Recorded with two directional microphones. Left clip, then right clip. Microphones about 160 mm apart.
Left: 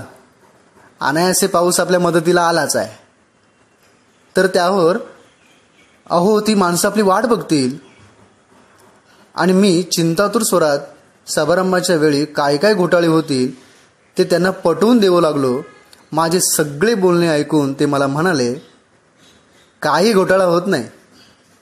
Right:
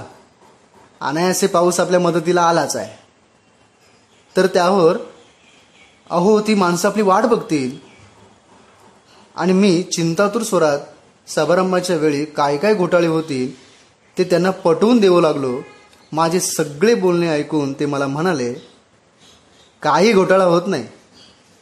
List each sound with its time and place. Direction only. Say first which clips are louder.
0.9 s a man's voice: left 3 dB; 15° left (ahead or behind)
4.3 s a man's voice: left 1 dB; 15° left (ahead or behind)
6.0 s a man's voice: left 1 dB; 20° left (ahead or behind)
9.3 s a man's voice: left 2 dB; 15° left (ahead or behind)
19.8 s a man's voice: even; 15° left (ahead or behind)